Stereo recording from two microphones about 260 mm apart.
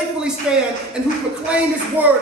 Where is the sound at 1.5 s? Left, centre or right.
Centre.